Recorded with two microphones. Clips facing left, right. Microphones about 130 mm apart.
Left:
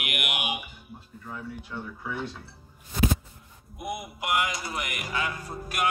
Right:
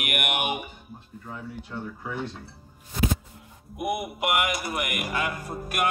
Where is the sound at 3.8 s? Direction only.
25° right (ahead or behind).